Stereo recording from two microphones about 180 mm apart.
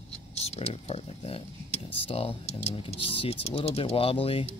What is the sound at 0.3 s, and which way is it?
Speech, 35° left (ahead or behind).